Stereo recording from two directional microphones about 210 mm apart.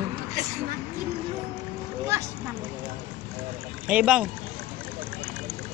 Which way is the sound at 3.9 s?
5° right (ahead or behind).